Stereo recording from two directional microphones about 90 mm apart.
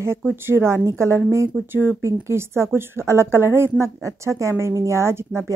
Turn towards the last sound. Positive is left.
turn(degrees=-30)  # may be behind; listen again after turning